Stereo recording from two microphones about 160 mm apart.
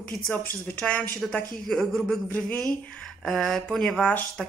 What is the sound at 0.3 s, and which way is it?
Speech, 10° left (ahead or behind).